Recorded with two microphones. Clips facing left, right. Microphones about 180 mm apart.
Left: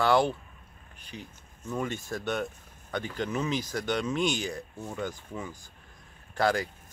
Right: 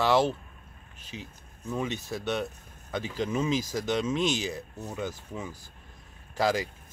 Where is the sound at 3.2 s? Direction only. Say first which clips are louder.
Right 4 dB; 25° right (ahead or behind).